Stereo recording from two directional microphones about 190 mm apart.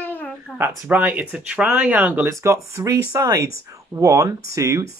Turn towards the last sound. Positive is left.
turn(degrees=-15)  # may be behind; listen again after turning